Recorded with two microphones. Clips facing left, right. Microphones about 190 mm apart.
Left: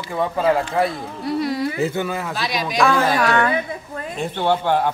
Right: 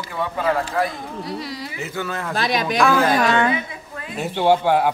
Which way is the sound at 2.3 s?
55° right (ahead or behind).